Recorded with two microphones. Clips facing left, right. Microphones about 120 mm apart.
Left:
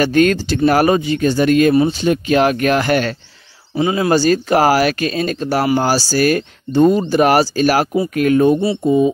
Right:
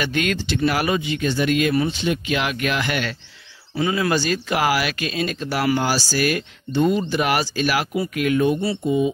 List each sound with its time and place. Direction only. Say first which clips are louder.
0.0 s speech: left 10 dB; 40° left (ahead or behind)
3.7 s speech: left 6 dB; 25° left (ahead or behind)